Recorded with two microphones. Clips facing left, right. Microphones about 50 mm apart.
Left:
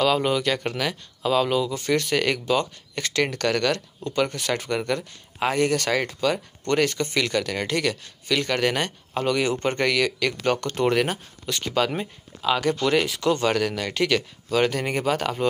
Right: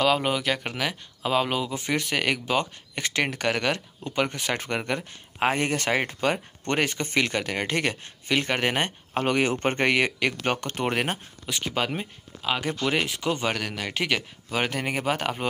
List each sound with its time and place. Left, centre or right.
0.0 s speech: centre; by 11.1 s right
11.4 s speech: centre